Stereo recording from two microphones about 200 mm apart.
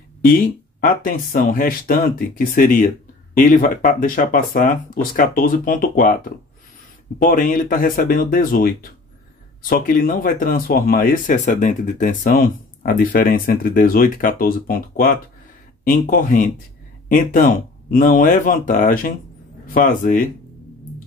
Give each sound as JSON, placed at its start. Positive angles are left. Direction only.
{"t": 0.2, "sound": "speech", "side_deg": 45}
{"t": 7.2, "sound": "speech", "side_deg": 45}